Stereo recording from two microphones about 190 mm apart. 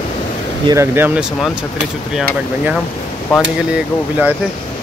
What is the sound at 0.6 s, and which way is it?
Speech, 15° right (ahead or behind).